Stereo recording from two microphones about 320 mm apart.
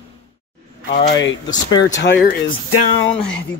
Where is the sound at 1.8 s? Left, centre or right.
Left.